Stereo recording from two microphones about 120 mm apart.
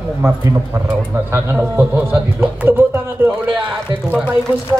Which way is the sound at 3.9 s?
40° right (ahead or behind).